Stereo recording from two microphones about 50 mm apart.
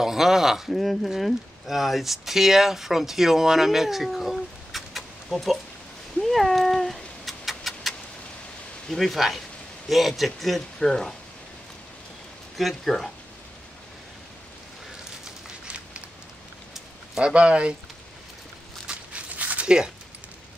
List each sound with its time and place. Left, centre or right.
0.0 s speech: centre
6.2 s cat: centre
8.8 s speech: centre
12.5 s speech: centre
17.2 s speech: right
18.9 s a sound: right